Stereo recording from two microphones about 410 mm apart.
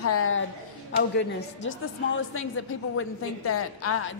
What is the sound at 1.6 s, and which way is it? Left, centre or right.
Speech, left.